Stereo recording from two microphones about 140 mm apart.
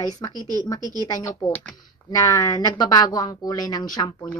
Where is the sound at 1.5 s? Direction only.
10° left (ahead or behind).